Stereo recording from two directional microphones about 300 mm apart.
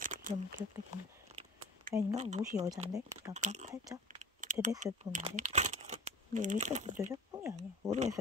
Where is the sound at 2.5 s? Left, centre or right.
Centre.